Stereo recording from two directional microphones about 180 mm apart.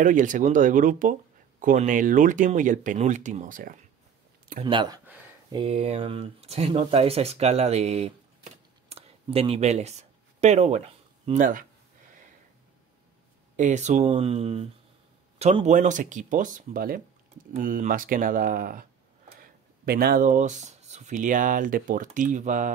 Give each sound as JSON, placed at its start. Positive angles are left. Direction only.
{"t": 0.0, "sound": "speech", "side_deg": -45}
{"t": 4.6, "sound": "speech", "side_deg": -25}
{"t": 8.8, "sound": "a sound", "side_deg": -35}
{"t": 11.2, "sound": "speech", "side_deg": -45}
{"t": 13.6, "sound": "speech", "side_deg": -40}